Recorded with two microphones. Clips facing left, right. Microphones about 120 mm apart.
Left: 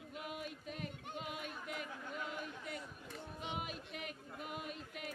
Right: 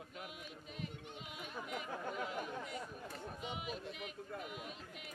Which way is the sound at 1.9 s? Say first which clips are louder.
Right 3 dB; 50° right (ahead or behind).